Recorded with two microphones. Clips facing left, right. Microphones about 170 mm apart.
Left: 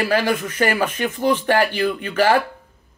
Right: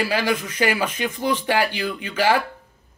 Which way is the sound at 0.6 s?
50° left (ahead or behind).